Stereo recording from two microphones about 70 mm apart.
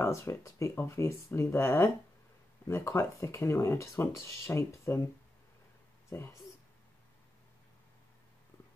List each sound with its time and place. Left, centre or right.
0.0 s speech: left
6.0 s speech: left